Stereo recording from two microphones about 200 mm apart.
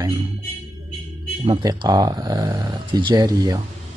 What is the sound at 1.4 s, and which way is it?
Speech, 20° right (ahead or behind).